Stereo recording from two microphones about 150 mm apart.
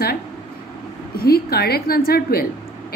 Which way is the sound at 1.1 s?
90° left.